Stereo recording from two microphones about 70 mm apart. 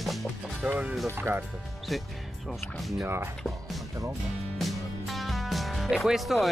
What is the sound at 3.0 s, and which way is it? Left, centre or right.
Speech, right.